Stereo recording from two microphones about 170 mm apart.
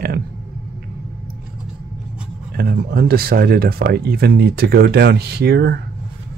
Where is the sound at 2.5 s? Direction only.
60° right (ahead or behind).